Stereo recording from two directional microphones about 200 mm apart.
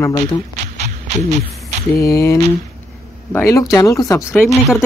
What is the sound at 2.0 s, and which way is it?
Speech, 15° left (ahead or behind).